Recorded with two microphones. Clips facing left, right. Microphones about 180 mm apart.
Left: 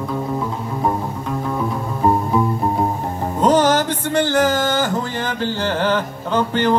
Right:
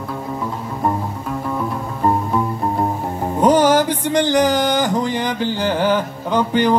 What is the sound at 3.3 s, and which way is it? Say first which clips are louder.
Speech: right 2 dB; 10° right (ahead or behind).